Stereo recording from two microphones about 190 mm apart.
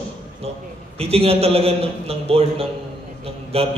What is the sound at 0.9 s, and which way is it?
A man's voice, 30° right (ahead or behind).